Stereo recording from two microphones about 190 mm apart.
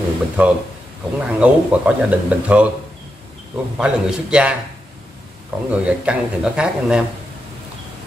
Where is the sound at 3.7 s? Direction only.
5° right (ahead or behind).